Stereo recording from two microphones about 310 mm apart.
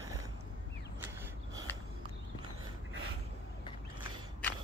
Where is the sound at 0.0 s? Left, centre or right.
Centre.